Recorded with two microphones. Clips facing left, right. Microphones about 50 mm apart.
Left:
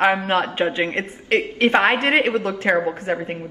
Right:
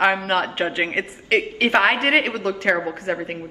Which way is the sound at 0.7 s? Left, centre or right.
Centre.